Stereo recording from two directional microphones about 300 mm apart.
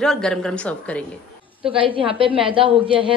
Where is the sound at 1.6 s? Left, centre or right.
Centre.